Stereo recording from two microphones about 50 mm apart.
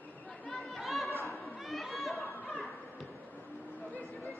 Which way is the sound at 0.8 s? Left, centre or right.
Centre.